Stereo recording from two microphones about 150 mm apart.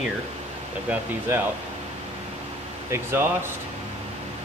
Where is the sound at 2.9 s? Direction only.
15° right (ahead or behind).